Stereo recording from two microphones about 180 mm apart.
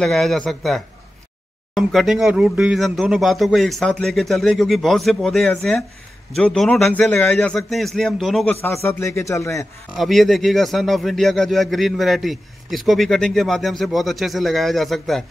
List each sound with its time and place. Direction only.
0.0 s a man's voice: centre (ahead or behind)
8.6 s a man's voice: 15° left (ahead or behind)
9.9 s a man's voice: centre (ahead or behind)